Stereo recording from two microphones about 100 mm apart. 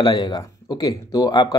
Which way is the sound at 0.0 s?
45° left (ahead or behind).